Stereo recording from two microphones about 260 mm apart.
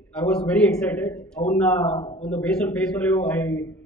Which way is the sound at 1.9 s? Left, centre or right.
Left.